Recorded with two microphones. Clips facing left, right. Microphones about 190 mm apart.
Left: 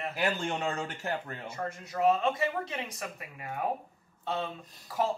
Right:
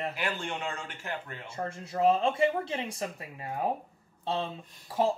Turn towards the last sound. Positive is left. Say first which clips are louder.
# right 2 dB
turn(degrees=-30)  # may be behind; listen again after turning